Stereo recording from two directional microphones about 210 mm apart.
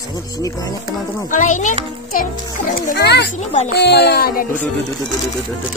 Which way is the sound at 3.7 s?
50° left (ahead or behind).